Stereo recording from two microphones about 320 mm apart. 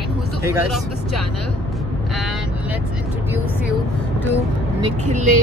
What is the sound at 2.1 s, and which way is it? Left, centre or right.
Vehicle, centre.